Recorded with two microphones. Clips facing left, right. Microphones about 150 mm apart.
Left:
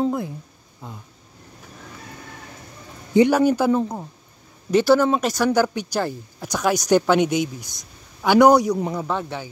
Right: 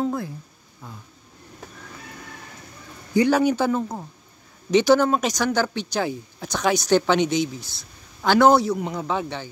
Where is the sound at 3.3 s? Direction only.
5° left (ahead or behind).